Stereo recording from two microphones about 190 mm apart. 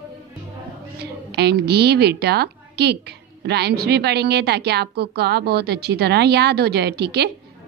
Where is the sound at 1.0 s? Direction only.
60° right (ahead or behind).